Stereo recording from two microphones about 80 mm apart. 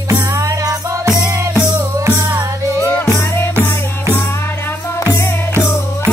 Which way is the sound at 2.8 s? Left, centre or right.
Left.